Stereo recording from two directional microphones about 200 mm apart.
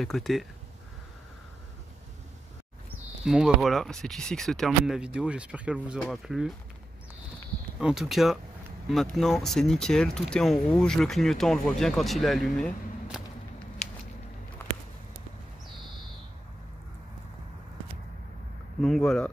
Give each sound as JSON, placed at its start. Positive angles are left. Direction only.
{"t": 0.0, "sound": "speech", "side_deg": 0}
{"t": 3.3, "sound": "speech", "side_deg": -5}
{"t": 7.8, "sound": "speech", "side_deg": 0}
{"t": 13.8, "sound": "a sound", "side_deg": 35}
{"t": 18.8, "sound": "speech", "side_deg": 0}